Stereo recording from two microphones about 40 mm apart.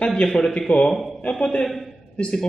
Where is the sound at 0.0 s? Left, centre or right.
Left.